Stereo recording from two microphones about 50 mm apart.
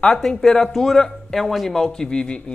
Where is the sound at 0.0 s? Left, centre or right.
Centre.